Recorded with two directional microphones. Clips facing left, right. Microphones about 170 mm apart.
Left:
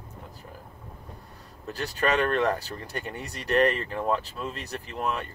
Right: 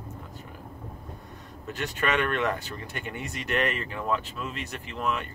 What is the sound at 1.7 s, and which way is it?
Speech, 35° left (ahead or behind).